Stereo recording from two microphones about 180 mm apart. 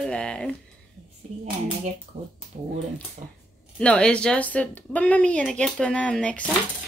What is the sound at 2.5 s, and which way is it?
Speech, 45° right (ahead or behind).